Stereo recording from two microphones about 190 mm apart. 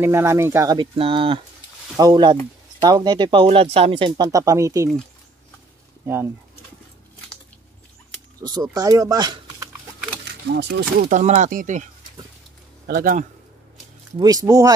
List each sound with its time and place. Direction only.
0.0 s speech: 15° right (ahead or behind)
6.0 s speech: 10° right (ahead or behind)
8.4 s speech: 20° right (ahead or behind)
10.5 s speech: 60° right (ahead or behind)
11.1 s speech: 40° right (ahead or behind)
12.8 s a man's voice: 50° right (ahead or behind)
14.1 s speech: 20° right (ahead or behind)